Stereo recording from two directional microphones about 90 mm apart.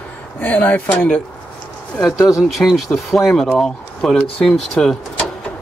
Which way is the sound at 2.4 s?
Centre (ahead or behind).